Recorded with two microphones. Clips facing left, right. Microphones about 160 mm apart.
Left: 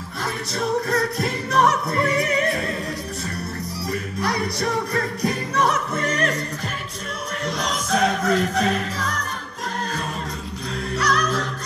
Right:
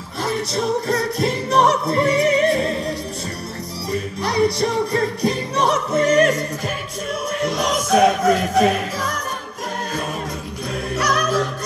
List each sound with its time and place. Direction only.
0.2 s music: 25° right (ahead or behind)
4.2 s music: 25° right (ahead or behind)
7.9 s music: 15° right (ahead or behind)